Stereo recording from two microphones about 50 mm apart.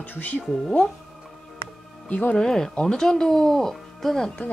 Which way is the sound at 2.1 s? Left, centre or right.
Left.